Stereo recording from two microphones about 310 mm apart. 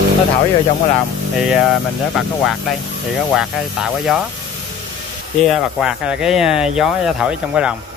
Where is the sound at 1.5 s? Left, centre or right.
Centre.